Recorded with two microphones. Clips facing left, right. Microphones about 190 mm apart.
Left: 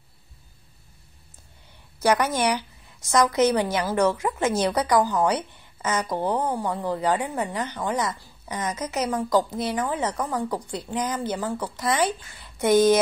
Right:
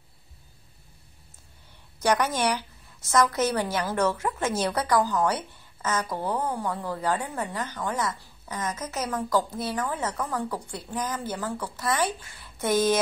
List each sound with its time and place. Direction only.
2.0 s a woman's voice: 10° left (ahead or behind)